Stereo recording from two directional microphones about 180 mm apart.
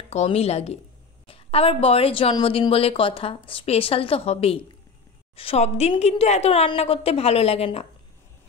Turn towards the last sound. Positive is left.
turn(degrees=35)  # may be behind; listen again after turning